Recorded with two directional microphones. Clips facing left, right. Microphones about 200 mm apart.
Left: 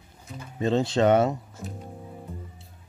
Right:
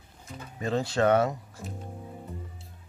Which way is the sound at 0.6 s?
25° left (ahead or behind).